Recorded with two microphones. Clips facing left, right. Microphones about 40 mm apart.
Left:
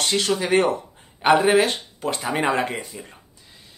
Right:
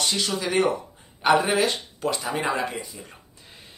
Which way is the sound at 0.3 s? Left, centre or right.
Left.